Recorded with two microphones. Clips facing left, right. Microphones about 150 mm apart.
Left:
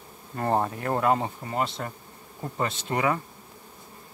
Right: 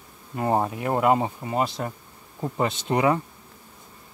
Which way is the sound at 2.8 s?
20° right (ahead or behind).